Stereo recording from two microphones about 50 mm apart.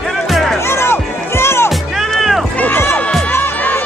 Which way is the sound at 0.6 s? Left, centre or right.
Left.